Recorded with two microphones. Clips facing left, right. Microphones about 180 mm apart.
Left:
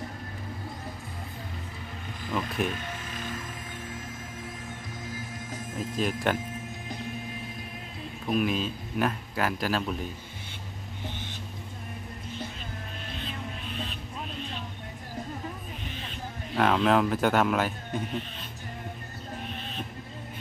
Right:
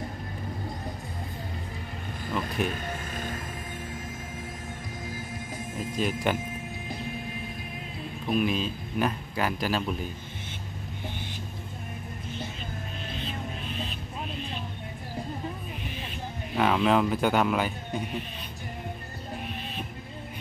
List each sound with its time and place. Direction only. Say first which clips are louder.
2.7 s music: right 2 dB; 45° right (ahead or behind)
5.5 s speech: left 1 dB; centre (ahead or behind)
8.3 s speech: even; centre (ahead or behind)
16.5 s speech: even; centre (ahead or behind)